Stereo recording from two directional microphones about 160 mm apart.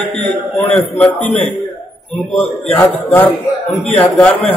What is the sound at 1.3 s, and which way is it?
A man's voice, 5° left (ahead or behind).